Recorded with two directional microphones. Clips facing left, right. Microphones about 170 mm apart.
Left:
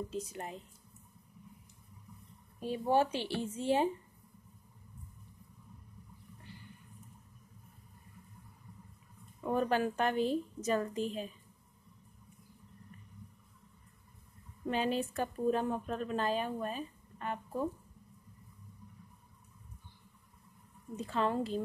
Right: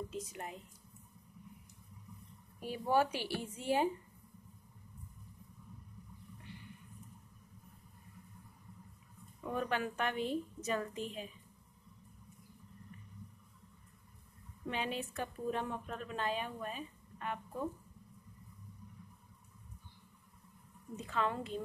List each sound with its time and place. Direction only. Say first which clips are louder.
0.1 s a woman's voice: left 3 dB; 30° left (ahead or behind)
2.6 s speech: left 2 dB; 25° left (ahead or behind)
9.4 s a woman's voice: left 6 dB; 35° left (ahead or behind)
14.7 s a woman's voice: left 6 dB; 35° left (ahead or behind)
21.0 s a woman's voice: left 4 dB; 35° left (ahead or behind)